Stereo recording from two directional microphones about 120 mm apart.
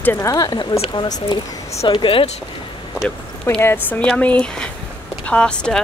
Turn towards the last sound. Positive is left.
turn(degrees=10)  # may be behind; listen again after turning